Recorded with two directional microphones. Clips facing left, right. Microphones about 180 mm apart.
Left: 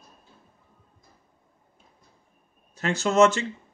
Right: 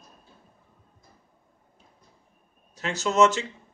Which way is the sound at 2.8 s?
50° left (ahead or behind).